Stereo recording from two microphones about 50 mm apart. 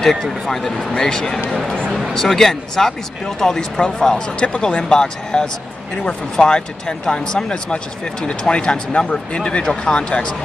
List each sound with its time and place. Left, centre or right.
0.0 s speech: centre